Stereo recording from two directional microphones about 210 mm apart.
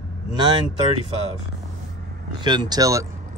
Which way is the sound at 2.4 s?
20° right (ahead or behind).